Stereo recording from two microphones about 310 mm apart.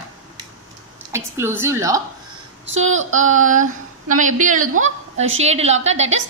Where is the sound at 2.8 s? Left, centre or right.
Right.